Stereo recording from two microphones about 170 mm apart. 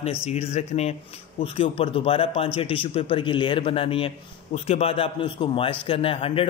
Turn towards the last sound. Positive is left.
turn(degrees=35)  # may be behind; listen again after turning